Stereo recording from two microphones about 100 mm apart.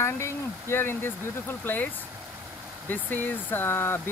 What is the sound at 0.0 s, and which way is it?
Speech, 25° left (ahead or behind).